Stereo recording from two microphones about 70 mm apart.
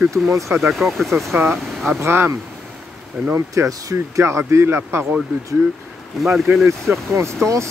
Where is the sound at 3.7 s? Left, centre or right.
Right.